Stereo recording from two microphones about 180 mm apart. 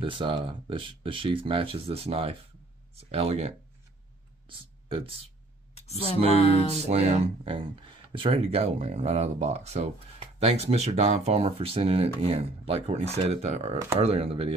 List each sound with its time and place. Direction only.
0.0 s speech: 30° right (ahead or behind)
5.8 s speech: 35° left (ahead or behind)
6.3 s music: 30° left (ahead or behind)
6.8 s speech: 35° right (ahead or behind)